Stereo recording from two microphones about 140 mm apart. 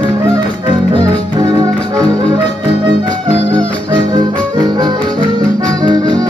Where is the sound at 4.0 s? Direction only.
30° right (ahead or behind).